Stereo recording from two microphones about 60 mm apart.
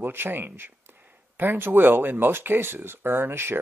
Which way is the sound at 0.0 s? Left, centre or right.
Right.